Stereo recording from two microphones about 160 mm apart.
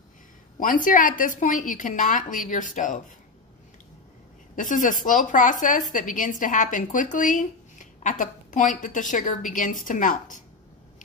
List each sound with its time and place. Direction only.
0.6 s a woman's voice: 60° left (ahead or behind)
4.6 s a woman's voice: 55° left (ahead or behind)